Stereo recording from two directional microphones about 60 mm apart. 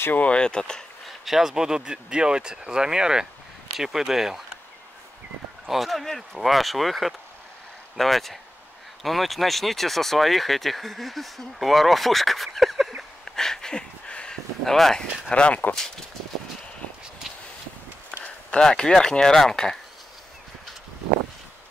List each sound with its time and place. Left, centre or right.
0.2 s speech: centre
1.0 s speech: centre
5.7 s speech: centre
18.2 s speech: centre